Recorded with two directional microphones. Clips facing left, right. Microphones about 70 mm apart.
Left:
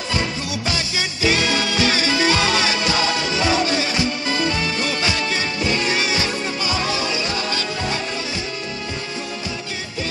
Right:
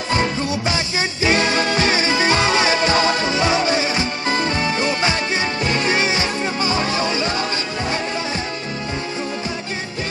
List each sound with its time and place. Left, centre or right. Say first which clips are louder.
0.1 s music: right 5 dB; right